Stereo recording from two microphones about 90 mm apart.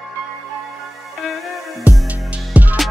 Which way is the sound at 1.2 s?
Centre (ahead or behind).